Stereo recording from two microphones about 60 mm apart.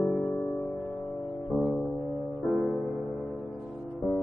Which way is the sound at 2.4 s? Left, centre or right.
Centre.